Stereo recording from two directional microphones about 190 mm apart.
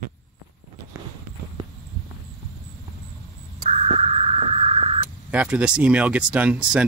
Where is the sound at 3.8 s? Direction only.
35° right (ahead or behind).